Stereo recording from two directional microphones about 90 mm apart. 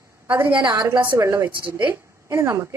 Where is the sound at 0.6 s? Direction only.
60° right (ahead or behind).